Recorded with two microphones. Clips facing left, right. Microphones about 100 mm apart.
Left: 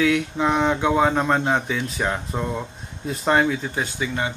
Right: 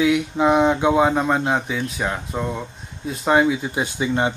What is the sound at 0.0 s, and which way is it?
Speech, 10° right (ahead or behind).